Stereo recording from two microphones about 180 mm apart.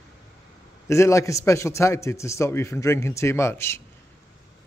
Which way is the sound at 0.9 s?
15° left (ahead or behind).